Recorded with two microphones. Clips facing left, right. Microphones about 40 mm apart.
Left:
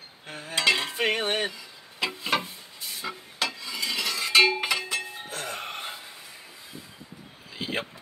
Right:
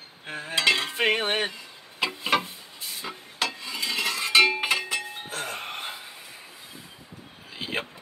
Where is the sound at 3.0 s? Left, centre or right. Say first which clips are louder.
Even; right.